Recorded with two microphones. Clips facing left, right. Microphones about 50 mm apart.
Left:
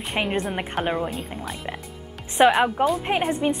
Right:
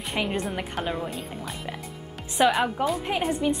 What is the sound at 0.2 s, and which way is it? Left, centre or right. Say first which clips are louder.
Speech: left 3 dB; left.